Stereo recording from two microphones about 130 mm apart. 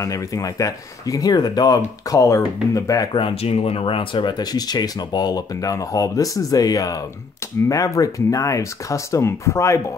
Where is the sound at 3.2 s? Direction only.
45° left (ahead or behind).